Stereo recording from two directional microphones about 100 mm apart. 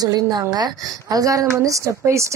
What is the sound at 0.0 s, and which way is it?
A woman's voice, 40° right (ahead or behind).